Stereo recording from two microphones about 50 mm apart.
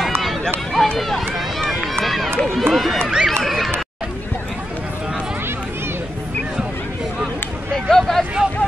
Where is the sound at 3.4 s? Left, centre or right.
Centre.